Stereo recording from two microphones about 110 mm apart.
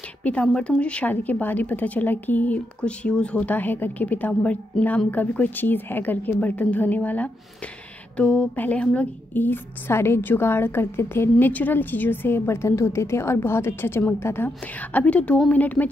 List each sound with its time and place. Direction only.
0.2 s a woman's voice: 10° left (ahead or behind)